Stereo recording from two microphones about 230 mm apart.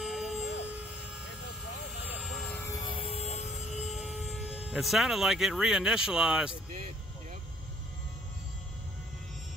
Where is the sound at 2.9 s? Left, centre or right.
Left.